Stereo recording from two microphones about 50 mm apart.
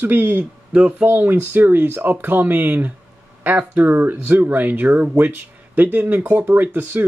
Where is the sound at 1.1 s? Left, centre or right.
Right.